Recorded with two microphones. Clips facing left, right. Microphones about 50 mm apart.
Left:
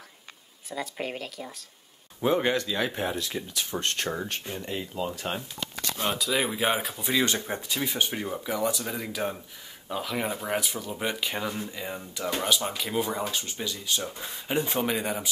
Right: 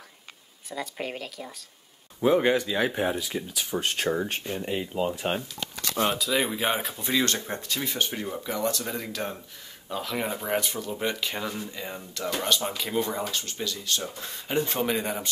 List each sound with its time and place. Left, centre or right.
0.7 s speech: centre
6.1 s speech: centre
12.5 s speech: centre